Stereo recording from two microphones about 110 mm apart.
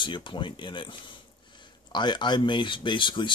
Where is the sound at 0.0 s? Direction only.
45° left (ahead or behind).